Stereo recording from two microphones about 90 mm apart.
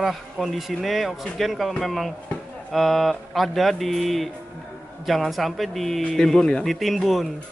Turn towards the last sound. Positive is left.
turn(degrees=0)  # may be behind; listen again after turning